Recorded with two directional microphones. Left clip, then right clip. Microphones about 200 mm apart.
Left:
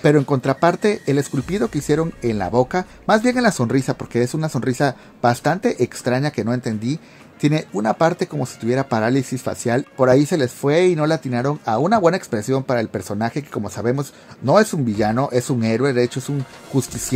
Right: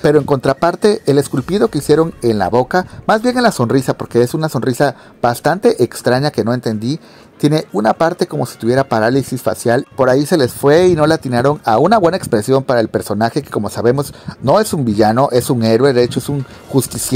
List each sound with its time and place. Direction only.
0.0 s speech: 25° right (ahead or behind)